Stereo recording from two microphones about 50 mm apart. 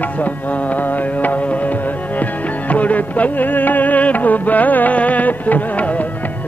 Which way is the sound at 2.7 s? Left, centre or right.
Left.